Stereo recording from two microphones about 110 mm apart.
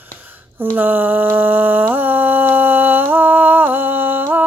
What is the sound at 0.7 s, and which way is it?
Music, 15° right (ahead or behind).